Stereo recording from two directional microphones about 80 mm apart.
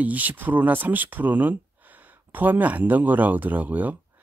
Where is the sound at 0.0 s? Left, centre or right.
Right.